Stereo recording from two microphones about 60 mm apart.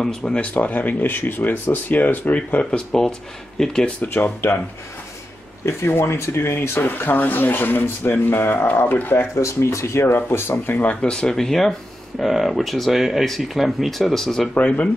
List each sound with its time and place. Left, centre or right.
0.0 s speech: centre
0.6 s speech: left
2.9 s speech: centre
4.1 s speech: left
5.9 s speech: left
9.3 s speech: left
10.8 s speech: left; by 14.5 s centre
14.5 s speech: left